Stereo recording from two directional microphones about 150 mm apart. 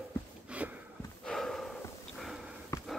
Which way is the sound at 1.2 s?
Centre (ahead or behind).